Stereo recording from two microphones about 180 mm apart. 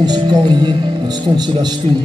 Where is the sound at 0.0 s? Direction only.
25° right (ahead or behind).